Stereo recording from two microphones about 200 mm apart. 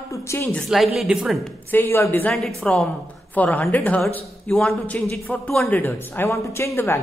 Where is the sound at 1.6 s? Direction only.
10° left (ahead or behind).